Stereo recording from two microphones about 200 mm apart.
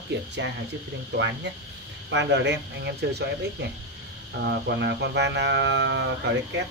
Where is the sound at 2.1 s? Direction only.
60° right (ahead or behind).